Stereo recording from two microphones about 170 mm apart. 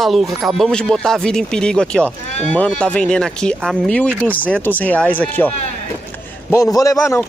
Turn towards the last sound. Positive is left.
turn(degrees=15)  # may be behind; listen again after turning